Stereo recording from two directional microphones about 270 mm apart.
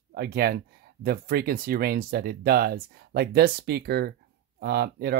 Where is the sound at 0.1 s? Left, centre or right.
Right.